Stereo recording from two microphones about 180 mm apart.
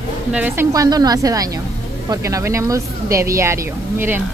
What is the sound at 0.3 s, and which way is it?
Speech, 10° right (ahead or behind).